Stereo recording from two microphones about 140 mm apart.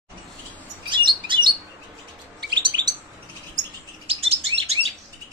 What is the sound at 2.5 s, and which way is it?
Bird, 35° right (ahead or behind).